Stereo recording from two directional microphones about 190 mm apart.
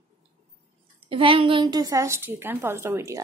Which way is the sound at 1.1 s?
30° right (ahead or behind).